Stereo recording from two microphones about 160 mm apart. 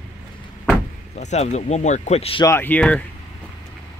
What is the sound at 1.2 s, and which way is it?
Speech, 45° left (ahead or behind).